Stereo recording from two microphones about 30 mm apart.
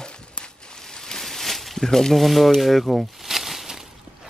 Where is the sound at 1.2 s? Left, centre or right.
Centre.